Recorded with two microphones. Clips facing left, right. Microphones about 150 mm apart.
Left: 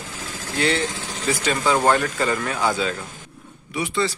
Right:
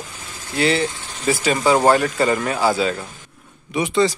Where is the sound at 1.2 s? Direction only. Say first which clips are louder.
Right 4 dB; 10° right (ahead or behind).